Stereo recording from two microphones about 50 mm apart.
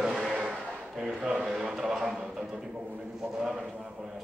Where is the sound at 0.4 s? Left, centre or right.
Right.